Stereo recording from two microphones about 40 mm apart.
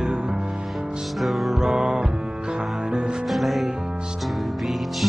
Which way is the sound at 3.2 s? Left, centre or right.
Centre.